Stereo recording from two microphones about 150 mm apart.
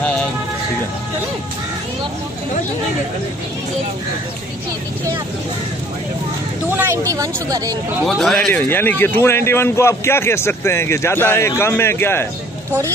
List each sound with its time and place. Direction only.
6.8 s speech: 20° right (ahead or behind)
8.1 s a man's voice: centre (ahead or behind)